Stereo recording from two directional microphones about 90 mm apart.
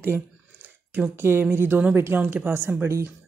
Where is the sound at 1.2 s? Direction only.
25° right (ahead or behind).